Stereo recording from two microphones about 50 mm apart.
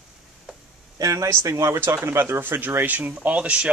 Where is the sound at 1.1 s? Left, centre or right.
Right.